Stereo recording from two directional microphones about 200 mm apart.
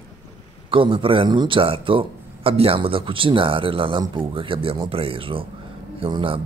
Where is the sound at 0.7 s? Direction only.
25° right (ahead or behind).